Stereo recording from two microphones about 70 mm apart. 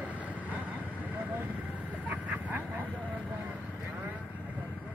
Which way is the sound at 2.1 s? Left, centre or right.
Right.